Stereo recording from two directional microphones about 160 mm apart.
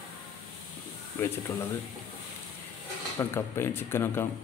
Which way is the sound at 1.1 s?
15° left (ahead or behind).